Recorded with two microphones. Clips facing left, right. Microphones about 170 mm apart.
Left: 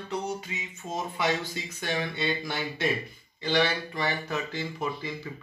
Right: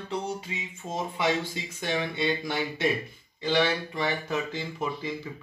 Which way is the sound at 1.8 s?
15° right (ahead or behind).